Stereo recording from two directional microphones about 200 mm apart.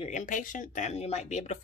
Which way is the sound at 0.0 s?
40° left (ahead or behind).